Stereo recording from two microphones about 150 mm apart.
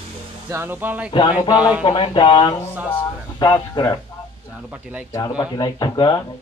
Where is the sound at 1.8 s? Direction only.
35° left (ahead or behind).